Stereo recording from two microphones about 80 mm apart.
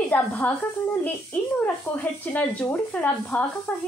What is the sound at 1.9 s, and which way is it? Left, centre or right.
Speech, left.